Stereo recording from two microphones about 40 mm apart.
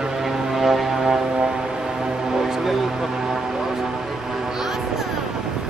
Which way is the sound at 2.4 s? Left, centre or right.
Centre.